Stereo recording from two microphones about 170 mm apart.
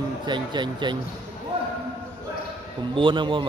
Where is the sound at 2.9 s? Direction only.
30° right (ahead or behind).